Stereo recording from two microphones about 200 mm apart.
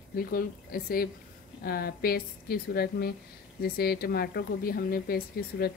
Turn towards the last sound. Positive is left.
turn(degrees=50)  # may be behind; listen again after turning